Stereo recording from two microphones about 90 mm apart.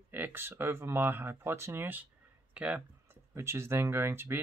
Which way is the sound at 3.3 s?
30° right (ahead or behind).